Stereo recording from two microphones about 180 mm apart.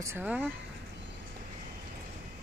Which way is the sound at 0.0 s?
10° right (ahead or behind).